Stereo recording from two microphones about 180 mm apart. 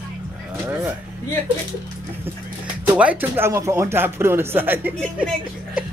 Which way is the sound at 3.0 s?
10° right (ahead or behind).